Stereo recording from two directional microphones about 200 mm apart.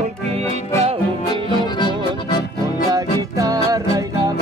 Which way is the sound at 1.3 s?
20° left (ahead or behind).